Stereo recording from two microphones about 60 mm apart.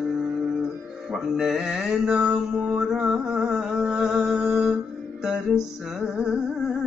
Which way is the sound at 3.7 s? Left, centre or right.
Centre.